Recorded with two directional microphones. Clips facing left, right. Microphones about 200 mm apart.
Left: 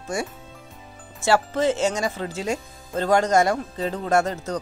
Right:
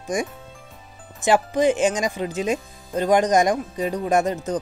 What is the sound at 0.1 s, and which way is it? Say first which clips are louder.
Speech: right 3 dB; 15° right (ahead or behind).